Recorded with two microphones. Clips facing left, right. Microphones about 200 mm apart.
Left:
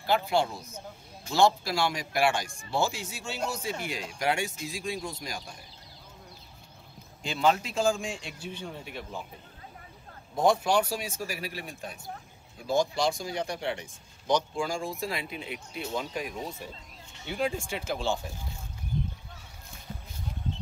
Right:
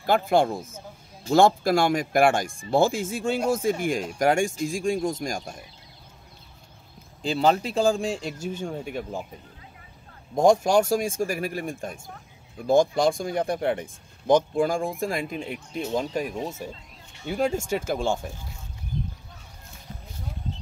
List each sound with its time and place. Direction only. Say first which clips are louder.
0.0 s speech: right 5 dB; 50° right (ahead or behind)
7.2 s speech: right 4 dB; 35° right (ahead or behind)
10.3 s speech: right 6 dB; 45° right (ahead or behind)